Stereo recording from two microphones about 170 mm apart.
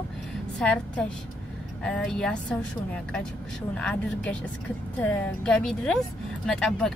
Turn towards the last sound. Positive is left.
turn(degrees=5)  # may be behind; listen again after turning